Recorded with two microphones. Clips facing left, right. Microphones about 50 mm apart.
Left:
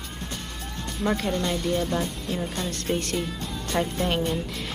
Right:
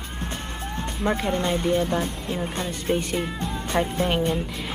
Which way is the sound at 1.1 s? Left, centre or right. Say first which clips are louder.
Right 2 dB; right.